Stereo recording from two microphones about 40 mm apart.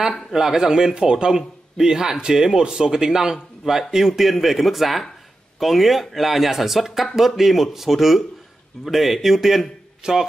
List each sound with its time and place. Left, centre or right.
0.3 s a man's voice: centre
10.0 s a man's voice: centre